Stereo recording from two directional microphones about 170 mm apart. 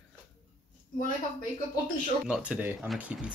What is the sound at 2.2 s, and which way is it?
Speech, 10° right (ahead or behind).